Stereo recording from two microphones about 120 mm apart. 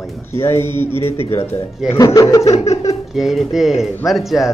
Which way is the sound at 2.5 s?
65° left (ahead or behind).